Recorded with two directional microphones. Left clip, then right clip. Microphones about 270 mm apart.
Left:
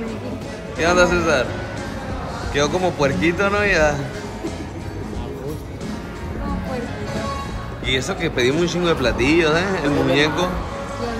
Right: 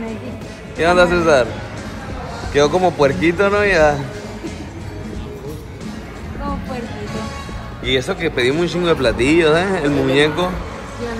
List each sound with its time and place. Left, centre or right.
0.7 s speech: centre
2.5 s speech: centre
7.8 s speech: centre
8.2 s speech: centre